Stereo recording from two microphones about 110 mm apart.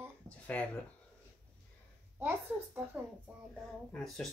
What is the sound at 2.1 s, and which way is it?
Speech, 20° right (ahead or behind).